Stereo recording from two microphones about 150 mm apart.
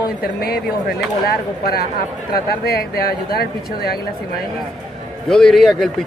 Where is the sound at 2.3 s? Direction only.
90° left.